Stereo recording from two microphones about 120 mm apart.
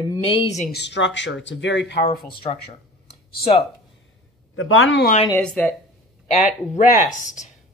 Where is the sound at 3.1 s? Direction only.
50° left (ahead or behind).